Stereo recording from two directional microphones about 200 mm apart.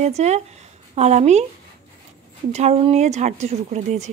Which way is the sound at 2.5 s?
35° right (ahead or behind).